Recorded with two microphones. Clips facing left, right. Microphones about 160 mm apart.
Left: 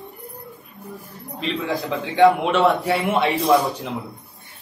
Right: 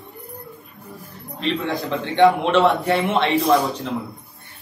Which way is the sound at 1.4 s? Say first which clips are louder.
Right 1 dB; centre (ahead or behind).